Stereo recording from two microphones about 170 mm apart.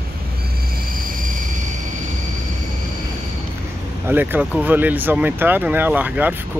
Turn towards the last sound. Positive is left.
turn(degrees=-10)  # may be behind; listen again after turning